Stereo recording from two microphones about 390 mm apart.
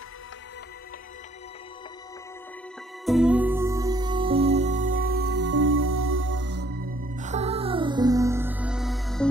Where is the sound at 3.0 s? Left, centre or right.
Centre.